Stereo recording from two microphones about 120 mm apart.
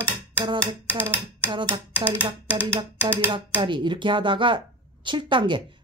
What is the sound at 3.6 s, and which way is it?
Speech, 40° right (ahead or behind).